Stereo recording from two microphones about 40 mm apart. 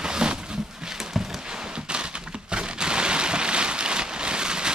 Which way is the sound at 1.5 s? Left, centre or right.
Right.